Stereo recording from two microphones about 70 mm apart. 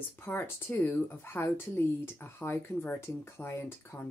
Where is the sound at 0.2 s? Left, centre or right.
Left.